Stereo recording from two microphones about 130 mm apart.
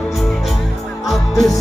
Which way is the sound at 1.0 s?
Centre (ahead or behind).